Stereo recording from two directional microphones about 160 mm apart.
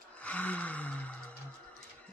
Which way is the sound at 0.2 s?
10° left (ahead or behind).